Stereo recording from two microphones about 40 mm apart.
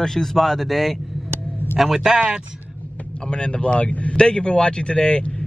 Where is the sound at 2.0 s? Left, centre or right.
Right.